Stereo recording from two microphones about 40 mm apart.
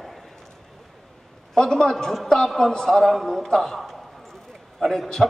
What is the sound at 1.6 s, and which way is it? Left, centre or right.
A man's voice, centre.